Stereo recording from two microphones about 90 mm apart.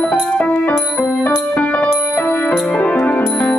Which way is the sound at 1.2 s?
15° left (ahead or behind).